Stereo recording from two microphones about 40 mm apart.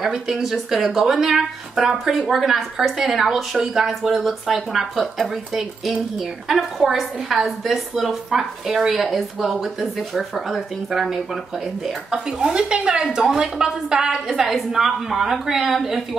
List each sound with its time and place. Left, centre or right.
0.0 s speech: centre
12.3 s speech: centre